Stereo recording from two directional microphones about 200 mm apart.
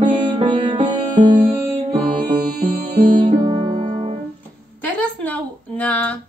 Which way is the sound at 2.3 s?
50° right (ahead or behind).